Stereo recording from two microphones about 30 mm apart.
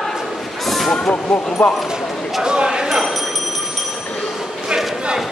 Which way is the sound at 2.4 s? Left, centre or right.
Right.